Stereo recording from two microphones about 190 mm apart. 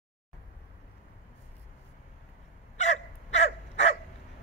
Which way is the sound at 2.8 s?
35° left (ahead or behind).